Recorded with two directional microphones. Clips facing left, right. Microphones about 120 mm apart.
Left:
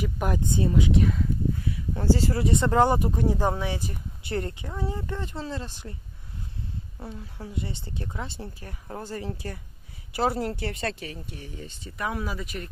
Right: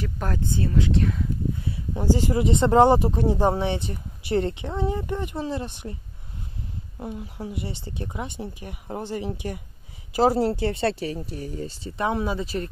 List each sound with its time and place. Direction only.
0.0 s speech: 15° left (ahead or behind)
2.0 s speech: 20° right (ahead or behind)
7.0 s speech: 15° right (ahead or behind)